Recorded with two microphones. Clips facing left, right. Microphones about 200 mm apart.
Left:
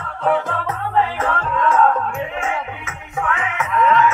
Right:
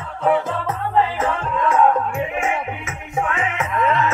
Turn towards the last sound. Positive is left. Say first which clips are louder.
# left 3 dB
turn(degrees=-35)  # may be behind; listen again after turning